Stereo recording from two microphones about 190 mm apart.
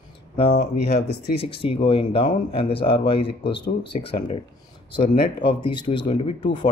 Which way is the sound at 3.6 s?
60° left (ahead or behind).